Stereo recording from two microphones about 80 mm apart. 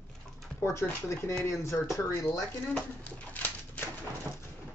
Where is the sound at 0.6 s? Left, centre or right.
Left.